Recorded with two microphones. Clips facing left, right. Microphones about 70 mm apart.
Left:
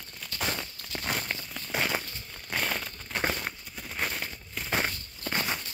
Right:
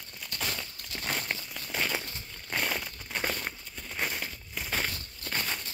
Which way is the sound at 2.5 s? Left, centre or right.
Centre.